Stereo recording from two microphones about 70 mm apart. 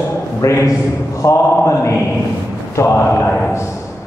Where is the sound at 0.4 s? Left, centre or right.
Left.